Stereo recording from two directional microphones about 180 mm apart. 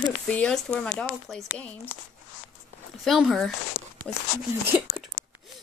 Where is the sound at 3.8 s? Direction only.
50° left (ahead or behind).